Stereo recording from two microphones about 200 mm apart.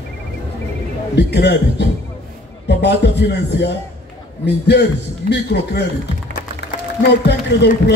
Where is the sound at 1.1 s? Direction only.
60° left (ahead or behind).